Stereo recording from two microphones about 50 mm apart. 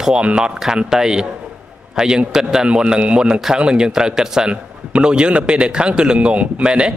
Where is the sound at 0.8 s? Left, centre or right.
Centre.